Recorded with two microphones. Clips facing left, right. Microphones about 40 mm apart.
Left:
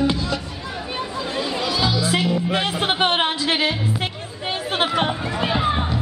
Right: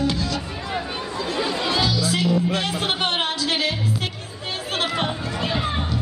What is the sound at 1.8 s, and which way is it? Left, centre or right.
Music, left.